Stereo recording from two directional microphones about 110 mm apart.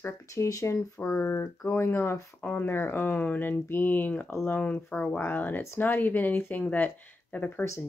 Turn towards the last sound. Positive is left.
turn(degrees=15)  # may be behind; listen again after turning